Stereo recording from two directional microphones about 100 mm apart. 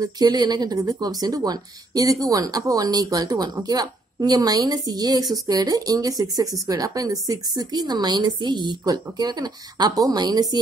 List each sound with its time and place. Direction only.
0.0 s a woman's voice: 45° right (ahead or behind)